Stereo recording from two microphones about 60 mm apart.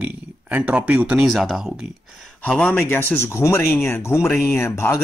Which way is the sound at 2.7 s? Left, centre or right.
Left.